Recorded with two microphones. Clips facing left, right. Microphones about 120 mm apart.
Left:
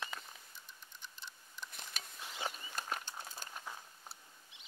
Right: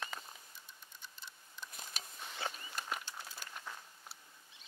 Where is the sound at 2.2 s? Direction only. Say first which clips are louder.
Even; 10° left (ahead or behind).